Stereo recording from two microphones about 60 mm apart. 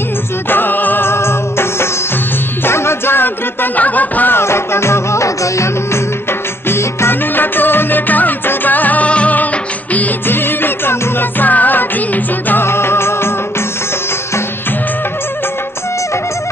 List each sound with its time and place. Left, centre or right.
0.5 s music: left
3.7 s music: left
4.4 s music: left
6.7 s music: left
7.3 s music: left
9.9 s music: left